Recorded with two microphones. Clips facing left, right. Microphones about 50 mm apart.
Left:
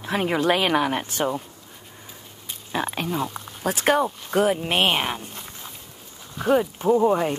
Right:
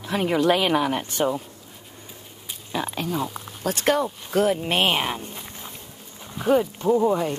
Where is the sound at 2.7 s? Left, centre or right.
Centre.